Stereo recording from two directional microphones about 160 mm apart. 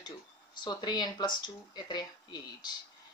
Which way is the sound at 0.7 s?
25° left (ahead or behind).